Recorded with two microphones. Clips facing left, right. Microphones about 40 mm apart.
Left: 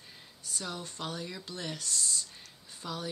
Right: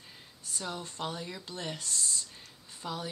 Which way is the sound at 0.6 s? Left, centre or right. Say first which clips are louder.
Right 2 dB; centre.